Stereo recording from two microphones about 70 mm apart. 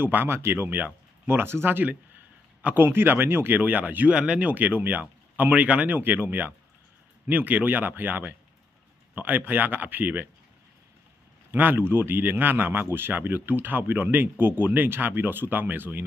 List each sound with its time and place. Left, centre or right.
0.0 s speech: right
11.5 s speech: right